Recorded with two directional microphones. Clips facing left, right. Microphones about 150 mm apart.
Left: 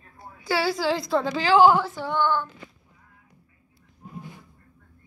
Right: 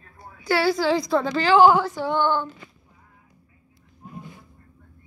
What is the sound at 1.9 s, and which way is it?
Female singing, 15° right (ahead or behind).